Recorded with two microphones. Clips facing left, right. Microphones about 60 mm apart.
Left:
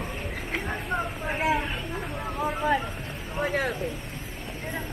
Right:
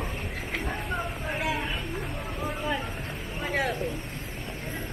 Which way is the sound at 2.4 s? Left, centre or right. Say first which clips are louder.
Left 6 dB; left.